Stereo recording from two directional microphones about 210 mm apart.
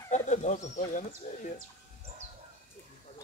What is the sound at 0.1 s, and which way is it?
Speech, 35° left (ahead or behind).